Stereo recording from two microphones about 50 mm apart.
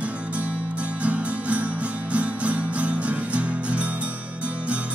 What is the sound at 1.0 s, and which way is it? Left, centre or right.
Music, right.